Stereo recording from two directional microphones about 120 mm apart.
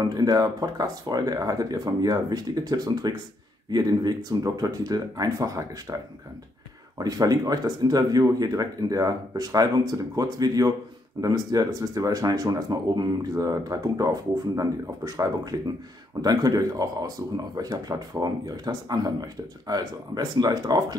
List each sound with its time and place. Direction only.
0.0 s speech: 35° right (ahead or behind)
7.0 s speech: 30° right (ahead or behind)